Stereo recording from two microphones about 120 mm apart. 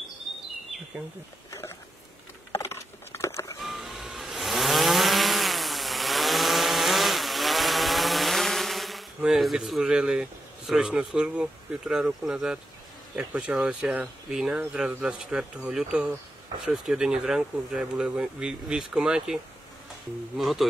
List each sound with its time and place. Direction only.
2.5 s a sound: 20° left (ahead or behind)
3.6 s vehicle: centre (ahead or behind)
10.7 s speech: 5° right (ahead or behind)